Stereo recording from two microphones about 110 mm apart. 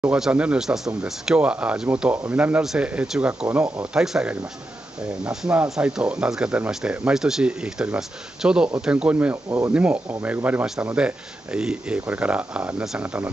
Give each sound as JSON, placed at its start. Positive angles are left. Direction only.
{"t": 0.1, "sound": "speech", "side_deg": -10}
{"t": 9.8, "sound": "speech", "side_deg": -15}